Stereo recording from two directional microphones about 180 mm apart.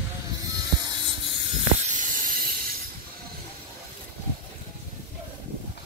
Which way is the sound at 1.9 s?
45° right (ahead or behind).